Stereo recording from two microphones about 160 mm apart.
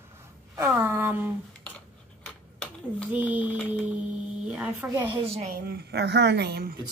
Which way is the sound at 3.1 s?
10° right (ahead or behind).